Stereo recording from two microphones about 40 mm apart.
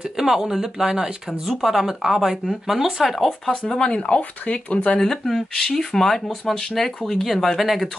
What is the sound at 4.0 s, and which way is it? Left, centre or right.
Speech, left.